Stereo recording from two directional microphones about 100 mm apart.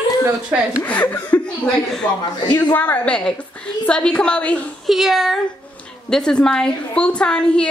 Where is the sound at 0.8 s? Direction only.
15° left (ahead or behind).